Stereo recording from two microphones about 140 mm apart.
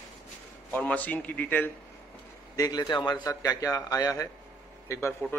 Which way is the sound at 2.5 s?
25° left (ahead or behind).